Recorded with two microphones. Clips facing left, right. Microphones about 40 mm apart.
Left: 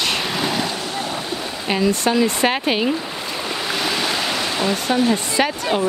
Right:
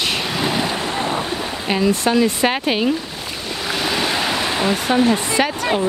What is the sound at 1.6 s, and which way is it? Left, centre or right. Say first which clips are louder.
Speech: right 1 dB; centre.